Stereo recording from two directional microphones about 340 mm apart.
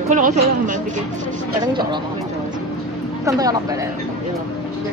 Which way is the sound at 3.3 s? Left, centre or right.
Centre.